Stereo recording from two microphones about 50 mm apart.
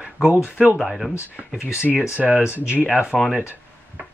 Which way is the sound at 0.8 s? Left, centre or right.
Centre.